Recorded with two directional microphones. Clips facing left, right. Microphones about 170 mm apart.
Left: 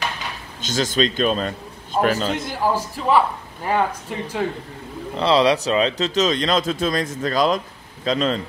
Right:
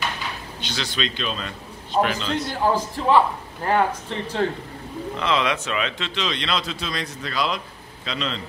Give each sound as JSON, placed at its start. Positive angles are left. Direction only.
{"t": 0.6, "sound": "speech", "side_deg": 45}
{"t": 2.6, "sound": "speech", "side_deg": 10}
{"t": 5.1, "sound": "speech", "side_deg": 35}